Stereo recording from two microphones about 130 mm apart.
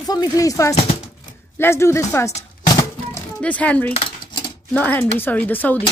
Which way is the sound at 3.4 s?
10° left (ahead or behind).